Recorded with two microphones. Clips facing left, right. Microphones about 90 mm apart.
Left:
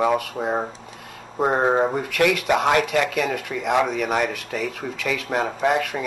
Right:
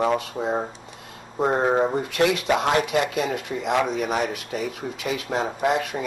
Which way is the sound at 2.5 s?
30° left (ahead or behind).